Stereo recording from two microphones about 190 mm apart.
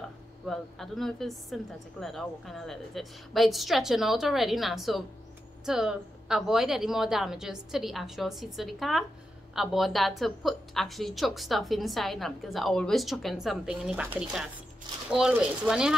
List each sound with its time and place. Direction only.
0.5 s a woman's voice: centre (ahead or behind)